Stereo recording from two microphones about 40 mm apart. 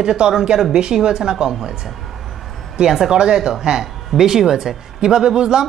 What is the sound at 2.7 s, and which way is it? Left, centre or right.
Speech, centre.